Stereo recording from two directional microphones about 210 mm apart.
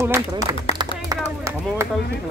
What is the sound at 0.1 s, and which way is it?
Speech, 15° right (ahead or behind).